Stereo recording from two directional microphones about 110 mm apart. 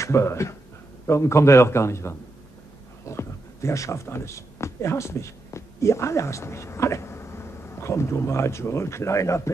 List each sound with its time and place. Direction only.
0.0 s a man's voice: 25° left (ahead or behind)